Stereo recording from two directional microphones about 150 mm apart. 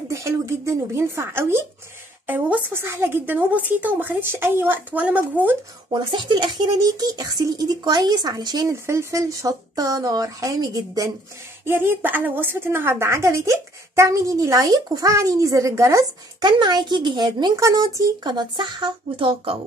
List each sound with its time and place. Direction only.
0.1 s a woman's voice: 20° right (ahead or behind)
5.9 s a woman's voice: 30° right (ahead or behind)